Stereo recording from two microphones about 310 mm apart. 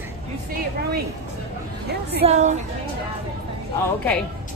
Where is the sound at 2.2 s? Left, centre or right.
Right.